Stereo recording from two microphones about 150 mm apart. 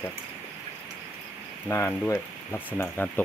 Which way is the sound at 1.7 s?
15° left (ahead or behind).